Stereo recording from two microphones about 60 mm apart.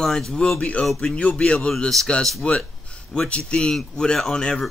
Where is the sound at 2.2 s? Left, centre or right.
Centre.